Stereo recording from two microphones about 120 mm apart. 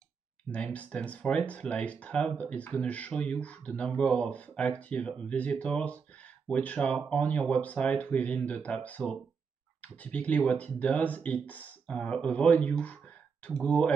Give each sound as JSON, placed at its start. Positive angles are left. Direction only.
{"t": 0.7, "sound": "speech", "side_deg": 10}